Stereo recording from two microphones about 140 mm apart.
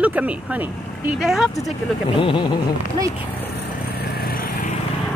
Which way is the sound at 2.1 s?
35° left (ahead or behind).